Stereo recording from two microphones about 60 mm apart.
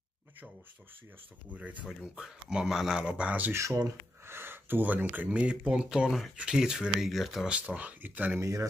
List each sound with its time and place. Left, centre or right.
1.5 s speech: right
1.9 s speech: centre; by 3.5 s right
3.5 s speech: right
4.3 s speech: right; by 7.4 s centre
7.4 s speech: right
8.4 s speech: right